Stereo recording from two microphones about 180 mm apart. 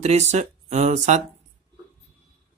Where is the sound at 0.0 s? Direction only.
40° right (ahead or behind).